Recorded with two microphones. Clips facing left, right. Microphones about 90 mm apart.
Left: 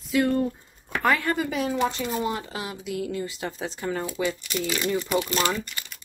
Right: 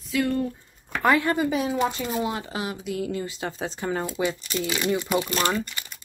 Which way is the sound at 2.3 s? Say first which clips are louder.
Even; 15° right (ahead or behind).